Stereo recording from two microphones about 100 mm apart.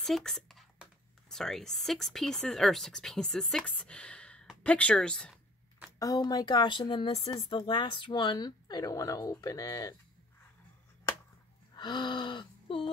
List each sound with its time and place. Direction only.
0.0 s a sound: 5° left (ahead or behind)
1.3 s speech: 5° left (ahead or behind)
5.9 s speech: 40° left (ahead or behind)
11.7 s speech: 50° left (ahead or behind)